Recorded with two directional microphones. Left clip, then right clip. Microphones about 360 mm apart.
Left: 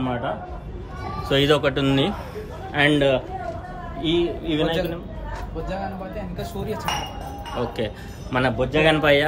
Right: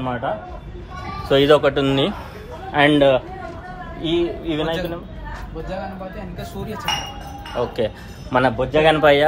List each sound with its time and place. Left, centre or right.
0.0 s a man's voice: centre
1.3 s a man's voice: centre
7.7 s speech: centre